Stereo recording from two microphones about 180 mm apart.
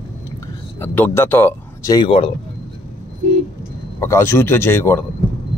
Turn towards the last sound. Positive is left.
turn(degrees=10)  # may be behind; listen again after turning